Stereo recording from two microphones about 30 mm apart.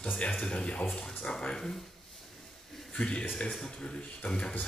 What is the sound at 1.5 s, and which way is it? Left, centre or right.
Speech, centre.